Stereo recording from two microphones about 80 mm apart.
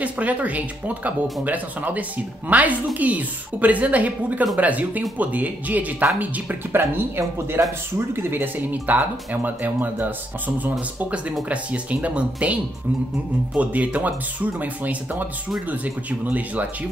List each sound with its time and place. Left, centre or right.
0.0 s a woman's voice: centre
13.6 s a woman's voice: centre